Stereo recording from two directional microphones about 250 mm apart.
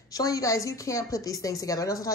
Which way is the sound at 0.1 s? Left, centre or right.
Centre.